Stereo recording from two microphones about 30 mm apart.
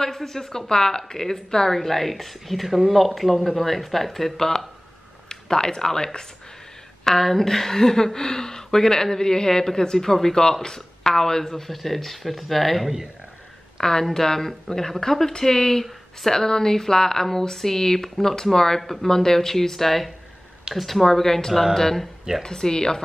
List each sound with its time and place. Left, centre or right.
0.0 s speech: centre
13.7 s speech: centre
18.8 s speech: centre
19.0 s speech: centre
22.4 s speech: left